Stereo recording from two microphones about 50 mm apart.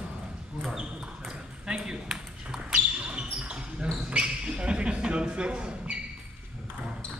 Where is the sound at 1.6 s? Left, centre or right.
Centre.